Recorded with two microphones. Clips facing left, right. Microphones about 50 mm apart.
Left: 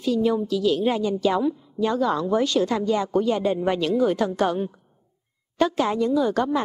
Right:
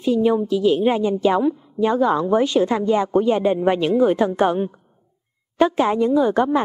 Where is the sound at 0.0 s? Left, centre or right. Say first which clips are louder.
Right 4 dB; right.